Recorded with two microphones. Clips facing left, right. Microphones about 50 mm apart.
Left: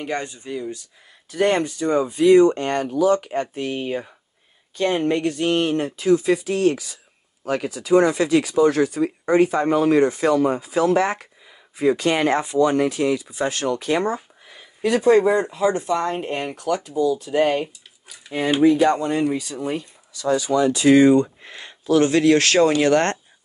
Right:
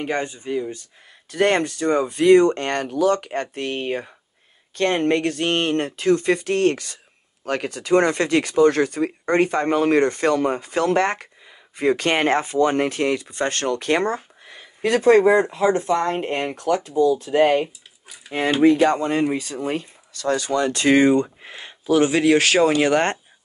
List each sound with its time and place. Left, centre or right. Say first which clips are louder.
0.0 s speech: right 2 dB; right
1.3 s speech: right 1 dB; right
15.8 s a woman's voice: right 2 dB; right
17.4 s speech: right 2 dB; right
18.6 s speech: right 1 dB; right
18.9 s a woman's voice: even; right
20.1 s speech: left 2 dB; right
21.1 s speech: left 2 dB; centre